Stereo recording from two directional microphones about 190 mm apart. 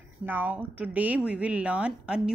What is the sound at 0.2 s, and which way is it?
A woman's voice, 10° right (ahead or behind).